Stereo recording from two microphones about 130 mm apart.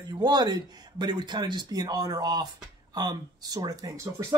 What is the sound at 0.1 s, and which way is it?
Speech, 30° right (ahead or behind).